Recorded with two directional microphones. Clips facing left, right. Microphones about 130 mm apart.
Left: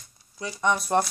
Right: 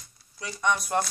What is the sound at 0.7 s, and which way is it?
Speech, 30° left (ahead or behind).